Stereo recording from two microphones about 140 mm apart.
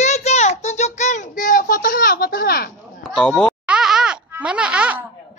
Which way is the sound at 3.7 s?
5° right (ahead or behind).